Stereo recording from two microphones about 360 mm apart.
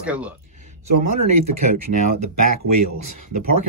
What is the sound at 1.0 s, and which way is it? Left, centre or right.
Speech, right.